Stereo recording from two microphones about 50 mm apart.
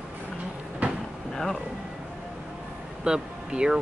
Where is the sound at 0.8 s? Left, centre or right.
Right.